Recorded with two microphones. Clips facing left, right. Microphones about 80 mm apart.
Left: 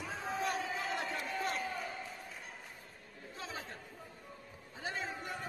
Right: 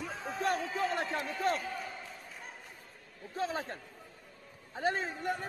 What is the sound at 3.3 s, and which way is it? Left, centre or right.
Chatter, right.